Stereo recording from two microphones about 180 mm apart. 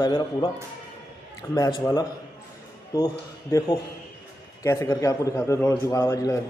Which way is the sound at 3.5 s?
20° left (ahead or behind).